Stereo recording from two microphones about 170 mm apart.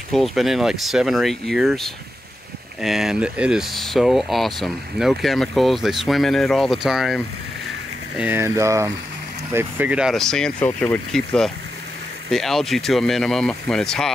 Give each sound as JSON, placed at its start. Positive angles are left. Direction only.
{"t": 0.1, "sound": "speech", "side_deg": 0}
{"t": 8.2, "sound": "speech", "side_deg": -15}